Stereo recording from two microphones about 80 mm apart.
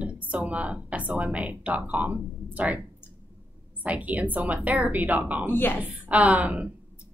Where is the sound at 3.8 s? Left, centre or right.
Centre.